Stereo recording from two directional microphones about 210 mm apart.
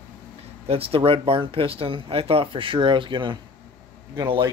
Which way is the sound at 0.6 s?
25° right (ahead or behind).